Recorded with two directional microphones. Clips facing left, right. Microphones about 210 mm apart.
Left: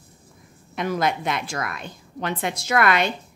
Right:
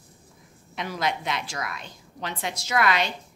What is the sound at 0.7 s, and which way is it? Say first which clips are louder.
A woman's voice: left 5 dB; 50° left (ahead or behind).